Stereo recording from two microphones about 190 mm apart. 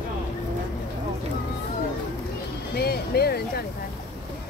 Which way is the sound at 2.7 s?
55° left (ahead or behind).